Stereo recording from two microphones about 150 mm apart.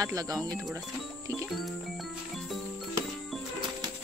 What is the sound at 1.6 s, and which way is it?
Music, centre (ahead or behind).